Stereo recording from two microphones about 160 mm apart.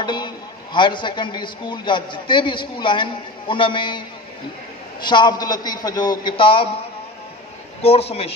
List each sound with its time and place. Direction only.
0.0 s a sound: 30° left (ahead or behind)
0.7 s a man's voice: 30° left (ahead or behind)
5.0 s a man's voice: 30° left (ahead or behind)
7.8 s a man's voice: 40° left (ahead or behind)